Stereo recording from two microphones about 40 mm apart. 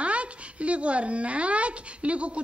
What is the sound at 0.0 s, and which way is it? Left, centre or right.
Speech, right.